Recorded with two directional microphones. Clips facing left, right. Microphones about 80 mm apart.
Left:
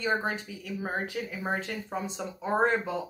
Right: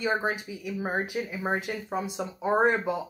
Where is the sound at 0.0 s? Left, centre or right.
Centre.